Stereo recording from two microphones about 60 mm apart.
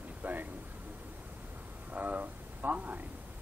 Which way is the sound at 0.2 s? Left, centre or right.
Right.